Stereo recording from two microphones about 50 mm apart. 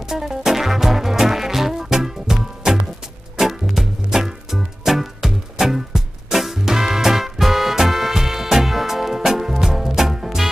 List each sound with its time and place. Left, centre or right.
0.0 s music: centre